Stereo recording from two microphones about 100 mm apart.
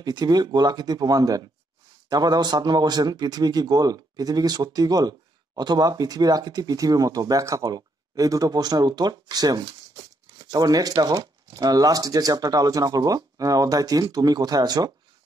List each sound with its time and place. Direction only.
0.0 s speech: 45° right (ahead or behind)